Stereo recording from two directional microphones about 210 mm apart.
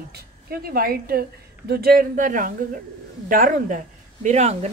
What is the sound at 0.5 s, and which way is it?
A woman's voice, 45° right (ahead or behind).